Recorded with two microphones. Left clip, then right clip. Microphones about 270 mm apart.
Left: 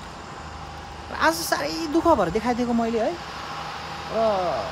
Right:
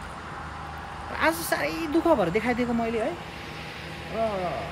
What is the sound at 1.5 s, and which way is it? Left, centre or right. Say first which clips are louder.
Speech: left 2 dB; centre.